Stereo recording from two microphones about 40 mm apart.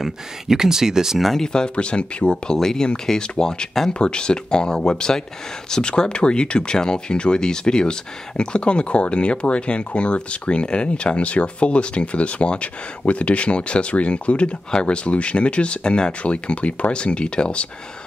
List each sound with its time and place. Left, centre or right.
0.0 s speech: centre
1.2 s speech: centre
1.5 s speech: left
2.5 s speech: centre